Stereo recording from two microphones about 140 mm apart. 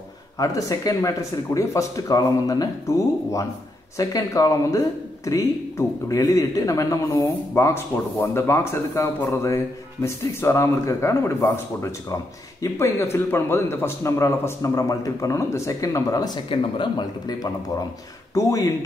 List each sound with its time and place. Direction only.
0.4 s speech: 25° left (ahead or behind)
4.0 s speech: 25° left (ahead or behind)